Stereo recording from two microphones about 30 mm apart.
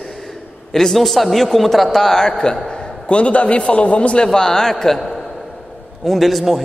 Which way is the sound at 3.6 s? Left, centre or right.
Left.